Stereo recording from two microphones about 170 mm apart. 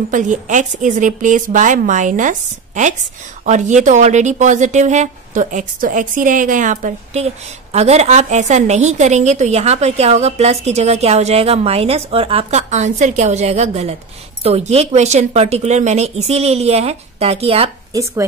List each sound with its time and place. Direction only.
0.1 s a woman's voice: 45° right (ahead or behind)